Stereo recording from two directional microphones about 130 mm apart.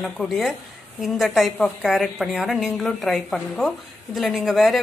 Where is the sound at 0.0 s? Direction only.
Centre (ahead or behind).